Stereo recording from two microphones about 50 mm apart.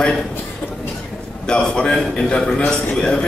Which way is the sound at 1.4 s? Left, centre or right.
Centre.